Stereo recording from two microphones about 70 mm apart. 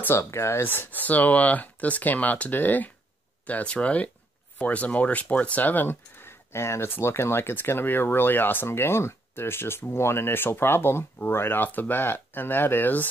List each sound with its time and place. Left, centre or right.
0.2 s speech: left